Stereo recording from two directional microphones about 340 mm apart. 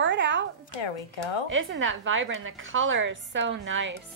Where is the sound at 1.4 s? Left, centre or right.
Right.